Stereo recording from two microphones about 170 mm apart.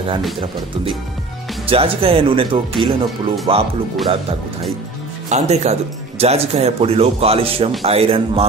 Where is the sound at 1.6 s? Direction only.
35° right (ahead or behind).